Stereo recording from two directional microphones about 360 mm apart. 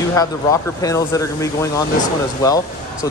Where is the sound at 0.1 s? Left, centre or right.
Centre.